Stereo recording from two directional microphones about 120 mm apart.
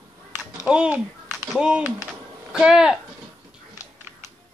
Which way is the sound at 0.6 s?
10° right (ahead or behind).